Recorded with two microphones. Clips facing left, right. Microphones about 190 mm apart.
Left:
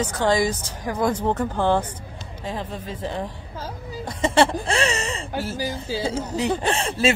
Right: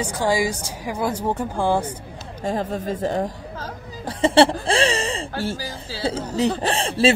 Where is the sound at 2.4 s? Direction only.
45° right (ahead or behind).